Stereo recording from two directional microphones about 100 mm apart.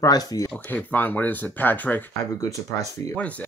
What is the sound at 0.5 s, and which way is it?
Speech, 15° left (ahead or behind).